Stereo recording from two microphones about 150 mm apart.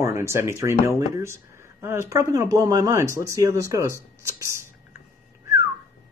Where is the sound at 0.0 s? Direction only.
20° right (ahead or behind).